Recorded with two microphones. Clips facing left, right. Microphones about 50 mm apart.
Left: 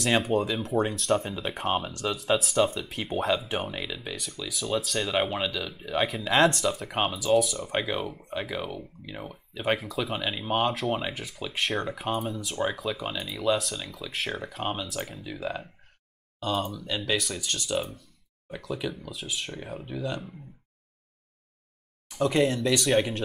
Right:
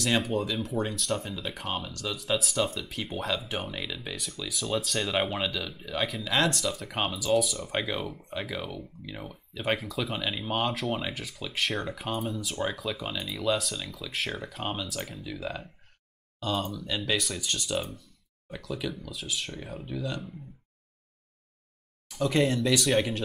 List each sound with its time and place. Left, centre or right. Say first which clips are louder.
0.2 s speech: left 3 dB; centre
1.1 s speech: left 5 dB; left
2.5 s speech: left 4 dB; centre
6.3 s speech: left 5 dB; left
6.8 s speech: left 3 dB; centre
22.3 s speech: even; centre